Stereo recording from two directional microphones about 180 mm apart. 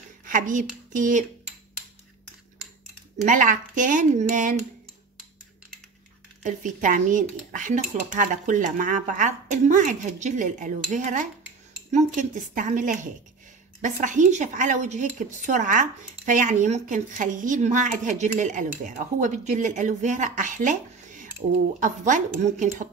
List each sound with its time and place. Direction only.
0.2 s speech: 45° right (ahead or behind)
3.3 s speech: 45° right (ahead or behind)
6.4 s speech: 45° right (ahead or behind)